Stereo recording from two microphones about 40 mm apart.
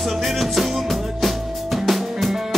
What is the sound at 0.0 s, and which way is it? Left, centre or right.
Music, centre.